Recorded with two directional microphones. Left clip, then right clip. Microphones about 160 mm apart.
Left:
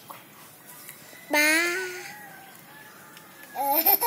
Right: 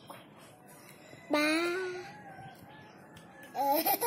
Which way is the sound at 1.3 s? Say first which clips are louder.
Left 8 dB; 20° right (ahead or behind).